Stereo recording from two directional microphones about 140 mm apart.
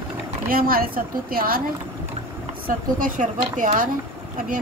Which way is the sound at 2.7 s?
80° right.